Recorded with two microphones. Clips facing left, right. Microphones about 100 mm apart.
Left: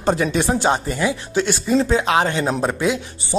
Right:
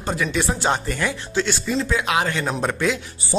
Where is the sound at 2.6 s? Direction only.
15° left (ahead or behind).